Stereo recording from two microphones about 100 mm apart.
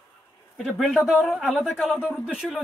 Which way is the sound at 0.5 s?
Centre (ahead or behind).